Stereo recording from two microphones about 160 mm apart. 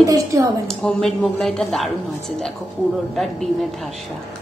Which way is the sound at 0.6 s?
5° left (ahead or behind).